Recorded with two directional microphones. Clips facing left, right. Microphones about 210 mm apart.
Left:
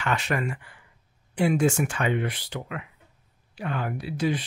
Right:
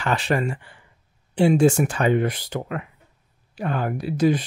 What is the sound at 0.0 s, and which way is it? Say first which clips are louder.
Speech: right 4 dB; 35° right (ahead or behind).